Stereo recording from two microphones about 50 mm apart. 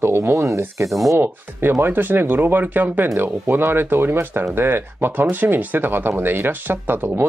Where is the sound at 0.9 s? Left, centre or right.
Centre.